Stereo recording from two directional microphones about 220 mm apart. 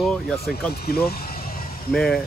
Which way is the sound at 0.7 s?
45° left (ahead or behind).